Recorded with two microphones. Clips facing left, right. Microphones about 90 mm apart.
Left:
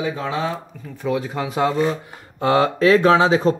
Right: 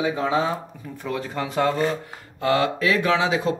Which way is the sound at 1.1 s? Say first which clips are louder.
Left 5 dB; 10° left (ahead or behind).